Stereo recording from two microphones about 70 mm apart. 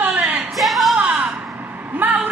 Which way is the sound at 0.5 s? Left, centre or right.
Centre.